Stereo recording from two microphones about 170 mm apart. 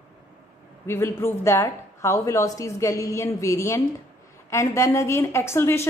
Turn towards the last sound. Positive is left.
turn(degrees=15)  # may be behind; listen again after turning